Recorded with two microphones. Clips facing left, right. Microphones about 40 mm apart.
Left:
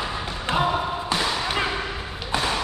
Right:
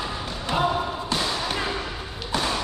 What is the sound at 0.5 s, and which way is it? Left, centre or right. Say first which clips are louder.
Basketball bounce: left 1 dB; centre.